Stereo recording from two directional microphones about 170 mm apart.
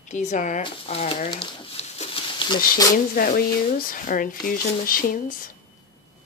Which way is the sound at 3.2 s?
60° left (ahead or behind).